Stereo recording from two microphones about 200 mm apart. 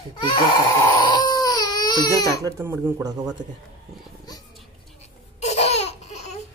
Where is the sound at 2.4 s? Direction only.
15° right (ahead or behind).